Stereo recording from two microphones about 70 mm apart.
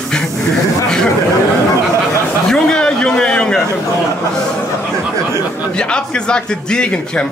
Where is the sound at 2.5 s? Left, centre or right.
Centre.